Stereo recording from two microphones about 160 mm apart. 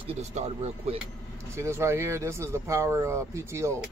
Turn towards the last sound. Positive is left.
turn(degrees=-15)  # may be behind; listen again after turning